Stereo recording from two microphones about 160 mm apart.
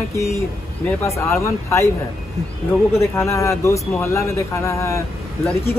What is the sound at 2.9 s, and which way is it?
Speech, 20° left (ahead or behind).